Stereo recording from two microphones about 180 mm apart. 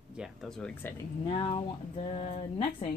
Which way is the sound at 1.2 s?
25° left (ahead or behind).